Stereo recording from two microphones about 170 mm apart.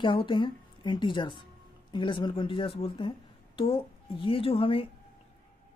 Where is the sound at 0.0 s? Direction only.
30° left (ahead or behind).